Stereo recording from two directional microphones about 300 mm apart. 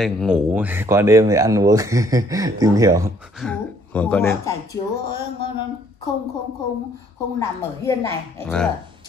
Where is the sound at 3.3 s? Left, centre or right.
Centre.